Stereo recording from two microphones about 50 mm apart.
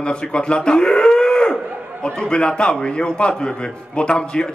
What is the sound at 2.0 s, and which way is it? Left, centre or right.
A man's voice, centre.